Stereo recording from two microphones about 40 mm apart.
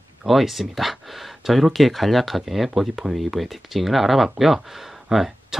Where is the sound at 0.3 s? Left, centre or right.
Centre.